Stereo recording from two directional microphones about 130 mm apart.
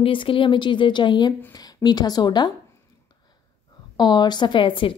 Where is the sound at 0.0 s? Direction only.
40° left (ahead or behind).